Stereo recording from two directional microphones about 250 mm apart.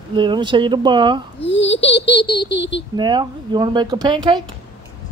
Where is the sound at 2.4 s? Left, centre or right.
Left.